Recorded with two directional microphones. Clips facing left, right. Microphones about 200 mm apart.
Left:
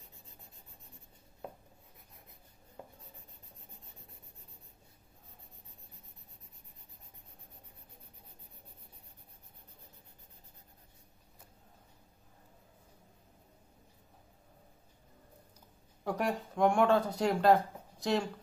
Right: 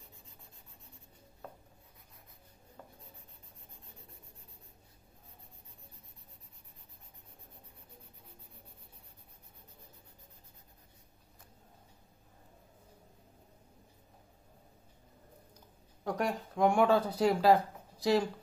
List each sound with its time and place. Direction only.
2.8 s writing: 15° left (ahead or behind)
16.0 s speech: centre (ahead or behind)